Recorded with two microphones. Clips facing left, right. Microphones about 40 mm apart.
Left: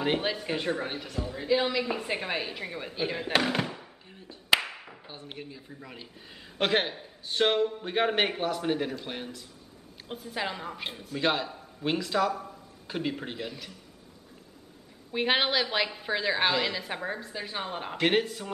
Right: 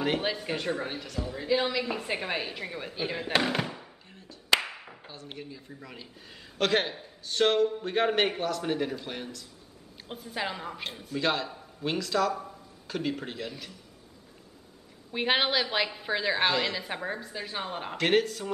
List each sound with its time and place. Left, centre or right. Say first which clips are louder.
0.2 s a woman's voice: left 1 dB; centre
4.6 s clapping: even; centre
5.0 s speech: even; left
5.3 s a woman's voice: right 1 dB; centre
6.6 s a woman's voice: even; centre
11.1 s speech: left 1 dB; centre
15.1 s a woman's voice: even; centre
18.0 s speech: right 1 dB; centre